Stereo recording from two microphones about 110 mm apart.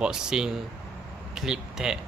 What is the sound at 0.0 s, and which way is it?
Speech, 5° right (ahead or behind).